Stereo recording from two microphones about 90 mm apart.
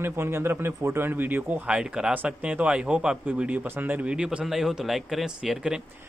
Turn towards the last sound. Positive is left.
turn(degrees=-10)  # may be behind; listen again after turning